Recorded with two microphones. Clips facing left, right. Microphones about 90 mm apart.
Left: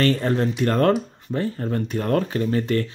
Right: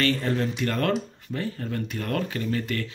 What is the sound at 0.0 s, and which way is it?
Speech, 35° left (ahead or behind).